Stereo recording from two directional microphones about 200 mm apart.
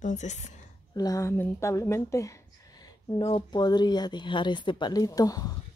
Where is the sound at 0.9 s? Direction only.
15° left (ahead or behind).